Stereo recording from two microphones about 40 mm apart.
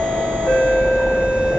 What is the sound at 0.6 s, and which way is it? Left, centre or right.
Vehicle, right.